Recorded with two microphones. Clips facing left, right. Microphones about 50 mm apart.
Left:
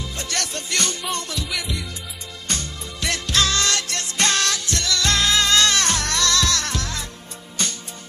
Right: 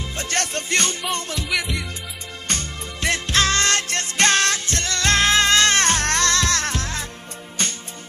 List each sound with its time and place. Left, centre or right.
0.0 s music: right
1.5 s music: centre
2.4 s music: right